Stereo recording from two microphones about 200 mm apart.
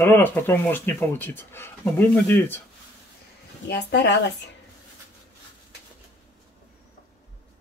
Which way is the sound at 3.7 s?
60° left (ahead or behind).